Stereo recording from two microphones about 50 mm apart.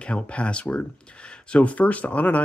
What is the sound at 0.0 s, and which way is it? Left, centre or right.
Speech, left.